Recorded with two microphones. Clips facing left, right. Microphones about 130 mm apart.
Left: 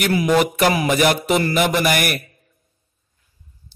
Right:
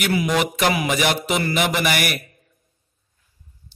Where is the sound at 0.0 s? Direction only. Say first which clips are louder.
Left 4 dB; 40° left (ahead or behind).